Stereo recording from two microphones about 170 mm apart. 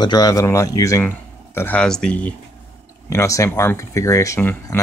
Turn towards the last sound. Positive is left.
turn(degrees=15)  # may be behind; listen again after turning